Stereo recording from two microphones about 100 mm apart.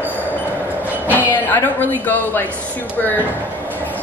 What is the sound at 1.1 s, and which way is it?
A woman's voice, 20° left (ahead or behind).